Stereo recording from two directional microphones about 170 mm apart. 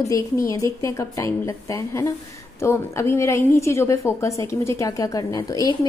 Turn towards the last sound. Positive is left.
turn(degrees=20)  # may be behind; listen again after turning